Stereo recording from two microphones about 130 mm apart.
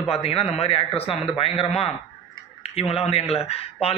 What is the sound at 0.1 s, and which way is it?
Speech, 50° left (ahead or behind).